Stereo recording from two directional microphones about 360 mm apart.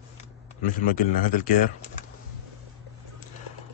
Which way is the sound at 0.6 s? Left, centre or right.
Left.